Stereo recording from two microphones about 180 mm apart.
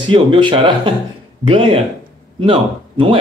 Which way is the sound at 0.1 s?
30° right (ahead or behind).